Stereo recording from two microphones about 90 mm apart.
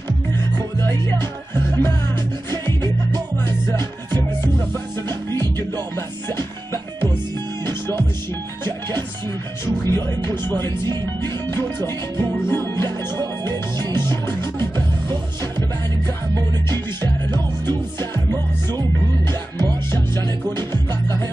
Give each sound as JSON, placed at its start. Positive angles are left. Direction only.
{"t": 0.7, "sound": "music", "side_deg": 30}
{"t": 2.8, "sound": "music", "side_deg": -55}
{"t": 5.0, "sound": "music", "side_deg": -50}
{"t": 7.6, "sound": "music", "side_deg": 30}
{"t": 9.8, "sound": "music", "side_deg": -45}
{"t": 11.5, "sound": "music", "side_deg": 25}
{"t": 12.7, "sound": "music", "side_deg": -50}
{"t": 16.3, "sound": "music", "side_deg": -50}